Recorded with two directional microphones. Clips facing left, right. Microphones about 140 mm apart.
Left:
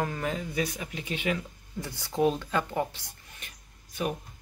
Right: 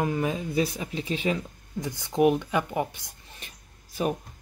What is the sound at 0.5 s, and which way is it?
Speech, 30° right (ahead or behind).